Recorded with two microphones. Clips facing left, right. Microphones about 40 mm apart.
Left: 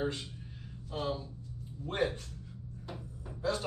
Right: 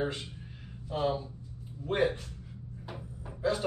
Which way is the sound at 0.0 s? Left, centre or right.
Centre.